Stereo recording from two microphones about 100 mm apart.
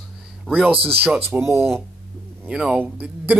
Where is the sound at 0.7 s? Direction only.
70° right (ahead or behind).